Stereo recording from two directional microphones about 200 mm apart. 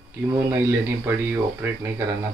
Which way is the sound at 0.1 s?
10° right (ahead or behind).